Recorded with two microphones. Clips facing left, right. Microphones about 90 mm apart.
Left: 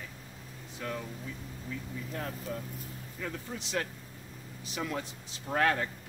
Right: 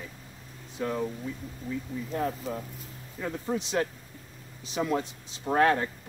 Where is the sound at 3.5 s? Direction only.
70° right (ahead or behind).